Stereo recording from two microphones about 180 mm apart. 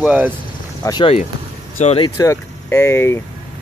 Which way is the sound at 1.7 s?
40° left (ahead or behind).